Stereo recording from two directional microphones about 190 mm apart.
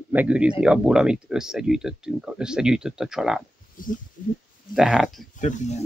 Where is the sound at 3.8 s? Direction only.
45° left (ahead or behind).